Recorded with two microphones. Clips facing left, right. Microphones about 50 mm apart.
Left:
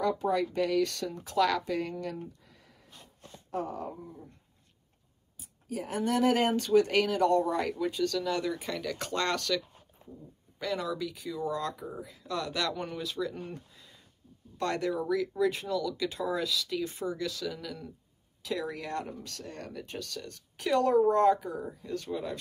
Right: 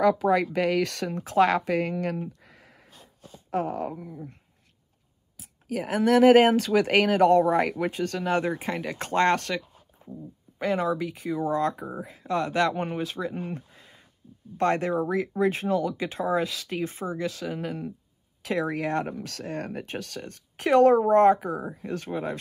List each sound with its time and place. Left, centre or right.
0.0 s speech: right
1.7 s speech: right
2.2 s a sound: right
3.4 s speech: right
5.4 s speech: right
10.6 s speech: right
17.0 s speech: right
17.3 s speech: right